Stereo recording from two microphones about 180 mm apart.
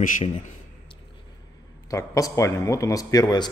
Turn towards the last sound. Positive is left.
turn(degrees=25)  # may be behind; listen again after turning